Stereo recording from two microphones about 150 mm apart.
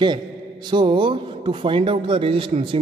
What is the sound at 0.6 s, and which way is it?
A man's voice, 30° right (ahead or behind).